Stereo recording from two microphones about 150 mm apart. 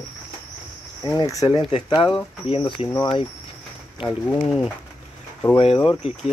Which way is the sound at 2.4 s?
40° left (ahead or behind).